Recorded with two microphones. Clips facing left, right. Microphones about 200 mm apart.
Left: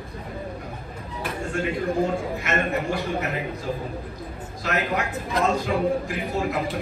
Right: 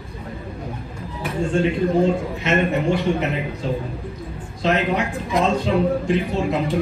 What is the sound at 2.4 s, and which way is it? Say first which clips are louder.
Speech: right 8 dB; 25° right (ahead or behind).